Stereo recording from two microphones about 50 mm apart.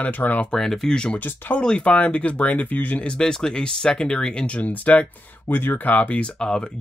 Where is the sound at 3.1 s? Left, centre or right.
Centre.